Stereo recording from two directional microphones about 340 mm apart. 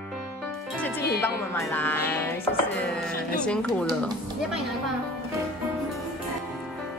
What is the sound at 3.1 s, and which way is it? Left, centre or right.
Speech, left.